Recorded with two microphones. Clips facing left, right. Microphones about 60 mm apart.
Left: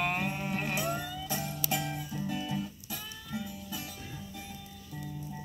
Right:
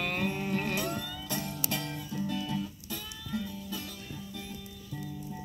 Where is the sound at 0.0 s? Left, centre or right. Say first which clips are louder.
Even; left.